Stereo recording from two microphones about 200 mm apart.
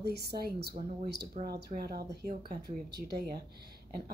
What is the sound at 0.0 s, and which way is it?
A woman's voice, 55° right (ahead or behind).